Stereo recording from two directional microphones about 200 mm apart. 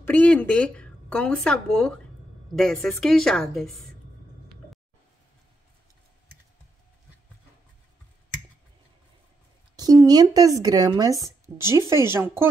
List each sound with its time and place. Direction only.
0.0 s speech: 10° left (ahead or behind)
9.8 s speech: 20° right (ahead or behind)